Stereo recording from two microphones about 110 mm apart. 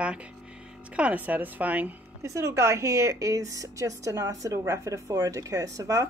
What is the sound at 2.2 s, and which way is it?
Speech, 25° right (ahead or behind).